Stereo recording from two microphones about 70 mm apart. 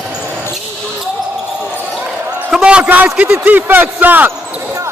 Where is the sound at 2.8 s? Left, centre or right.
Right.